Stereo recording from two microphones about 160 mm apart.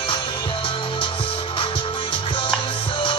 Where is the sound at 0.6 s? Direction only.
35° left (ahead or behind).